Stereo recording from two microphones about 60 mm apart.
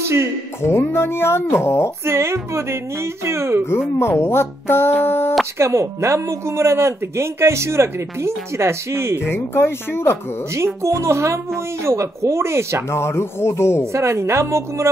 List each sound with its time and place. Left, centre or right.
0.6 s speech: left
2.0 s speech: right
4.2 s speech: left
5.6 s speech: right
9.3 s speech: left
10.5 s speech: right
12.9 s speech: left
13.9 s speech: right